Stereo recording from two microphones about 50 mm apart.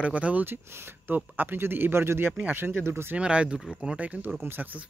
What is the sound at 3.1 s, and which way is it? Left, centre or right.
Speech, right.